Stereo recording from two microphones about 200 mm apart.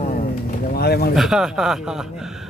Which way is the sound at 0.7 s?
50° left (ahead or behind).